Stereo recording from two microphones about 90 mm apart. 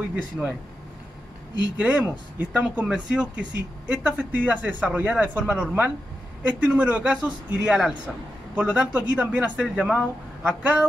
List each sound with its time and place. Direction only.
0.1 s speech: 15° right (ahead or behind)
1.8 s speech: 15° right (ahead or behind)